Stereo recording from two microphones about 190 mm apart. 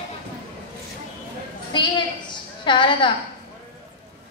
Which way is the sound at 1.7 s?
25° left (ahead or behind).